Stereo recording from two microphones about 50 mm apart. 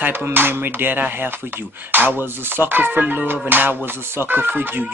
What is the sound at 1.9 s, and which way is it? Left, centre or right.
Speech, right.